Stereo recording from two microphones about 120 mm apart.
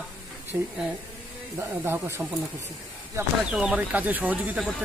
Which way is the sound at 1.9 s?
20° right (ahead or behind).